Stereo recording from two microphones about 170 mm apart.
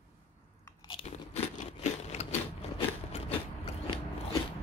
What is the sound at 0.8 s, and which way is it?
Crunch, 35° left (ahead or behind).